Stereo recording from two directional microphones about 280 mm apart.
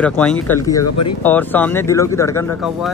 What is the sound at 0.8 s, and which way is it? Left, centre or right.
Speech, left.